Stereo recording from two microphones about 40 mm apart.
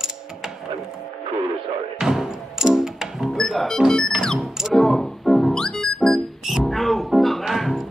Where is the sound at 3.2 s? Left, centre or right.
Centre.